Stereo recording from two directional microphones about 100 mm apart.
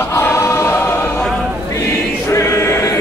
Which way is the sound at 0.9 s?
10° left (ahead or behind).